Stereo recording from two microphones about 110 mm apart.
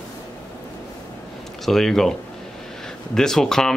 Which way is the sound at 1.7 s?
Centre (ahead or behind).